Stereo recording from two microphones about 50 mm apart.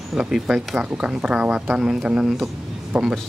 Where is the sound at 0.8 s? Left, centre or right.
Right.